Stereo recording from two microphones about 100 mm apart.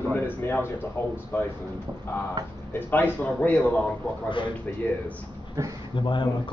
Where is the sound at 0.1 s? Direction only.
20° left (ahead or behind).